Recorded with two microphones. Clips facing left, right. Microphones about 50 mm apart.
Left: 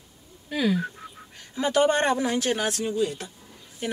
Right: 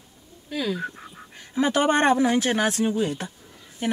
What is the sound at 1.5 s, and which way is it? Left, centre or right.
Speech, right.